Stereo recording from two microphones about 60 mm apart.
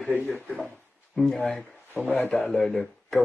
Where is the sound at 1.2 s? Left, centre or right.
Centre.